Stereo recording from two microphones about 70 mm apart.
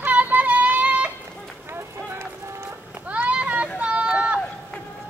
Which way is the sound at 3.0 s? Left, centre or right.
Centre.